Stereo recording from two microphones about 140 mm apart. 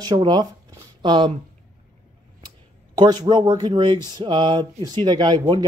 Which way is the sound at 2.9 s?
30° right (ahead or behind).